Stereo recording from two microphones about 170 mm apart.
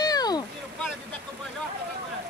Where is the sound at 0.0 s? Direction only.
25° left (ahead or behind).